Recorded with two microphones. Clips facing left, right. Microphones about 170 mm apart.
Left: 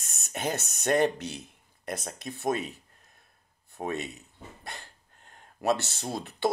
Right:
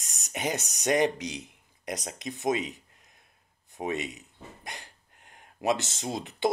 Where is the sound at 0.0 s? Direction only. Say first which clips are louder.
Even; 15° right (ahead or behind).